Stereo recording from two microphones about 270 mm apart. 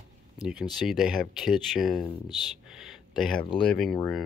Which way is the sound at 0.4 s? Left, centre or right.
Centre.